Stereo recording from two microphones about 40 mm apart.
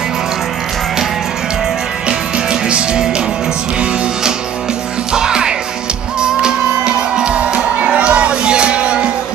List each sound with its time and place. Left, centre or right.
2.0 s music: right
5.1 s music: centre